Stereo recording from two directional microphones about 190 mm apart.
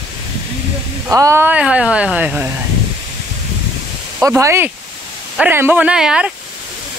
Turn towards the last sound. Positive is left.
turn(degrees=-5)  # may be behind; listen again after turning